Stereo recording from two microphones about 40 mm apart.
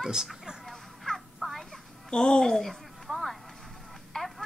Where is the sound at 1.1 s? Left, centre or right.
Centre.